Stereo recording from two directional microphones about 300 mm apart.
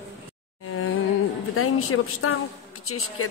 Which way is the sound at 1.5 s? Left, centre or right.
Left.